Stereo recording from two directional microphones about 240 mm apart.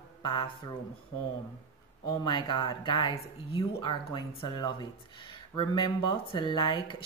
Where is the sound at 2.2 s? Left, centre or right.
Centre.